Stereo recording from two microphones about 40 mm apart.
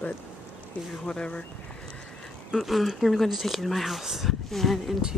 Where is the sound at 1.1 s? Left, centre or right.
Left.